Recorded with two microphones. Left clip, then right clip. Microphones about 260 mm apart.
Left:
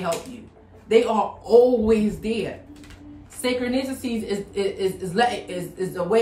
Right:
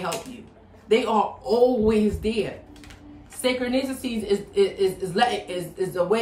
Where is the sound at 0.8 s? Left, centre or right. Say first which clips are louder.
Left 2 dB; centre.